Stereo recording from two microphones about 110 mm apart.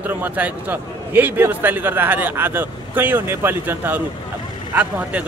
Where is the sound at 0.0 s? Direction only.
15° right (ahead or behind).